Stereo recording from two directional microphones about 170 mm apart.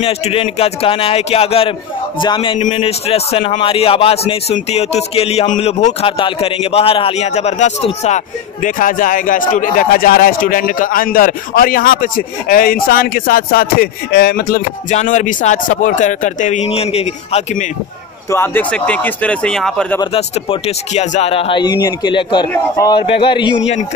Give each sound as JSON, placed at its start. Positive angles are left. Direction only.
{"t": 0.0, "sound": "a man's voice", "side_deg": 35}
{"t": 2.6, "sound": "a man's voice", "side_deg": 35}
{"t": 8.6, "sound": "speech", "side_deg": 50}
{"t": 15.0, "sound": "speech", "side_deg": 45}
{"t": 18.3, "sound": "speech", "side_deg": 10}
{"t": 20.2, "sound": "speech", "side_deg": 35}